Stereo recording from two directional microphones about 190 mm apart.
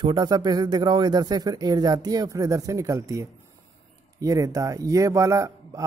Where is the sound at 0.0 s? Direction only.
25° right (ahead or behind).